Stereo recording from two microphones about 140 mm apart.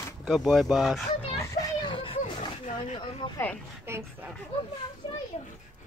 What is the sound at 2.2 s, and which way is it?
Roaring cats, 60° left (ahead or behind).